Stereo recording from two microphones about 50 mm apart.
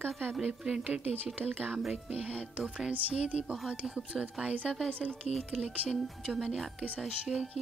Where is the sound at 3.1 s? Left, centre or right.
Right.